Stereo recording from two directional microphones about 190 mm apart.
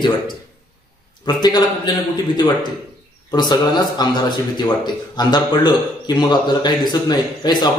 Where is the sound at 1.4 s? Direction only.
20° left (ahead or behind).